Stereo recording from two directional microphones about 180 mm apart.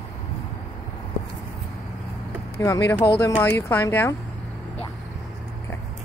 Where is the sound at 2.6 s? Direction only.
15° left (ahead or behind).